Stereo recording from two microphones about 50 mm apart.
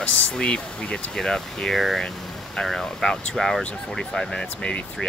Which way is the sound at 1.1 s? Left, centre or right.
Centre.